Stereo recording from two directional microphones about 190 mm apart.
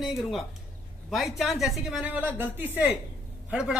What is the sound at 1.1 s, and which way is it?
Speech, centre (ahead or behind).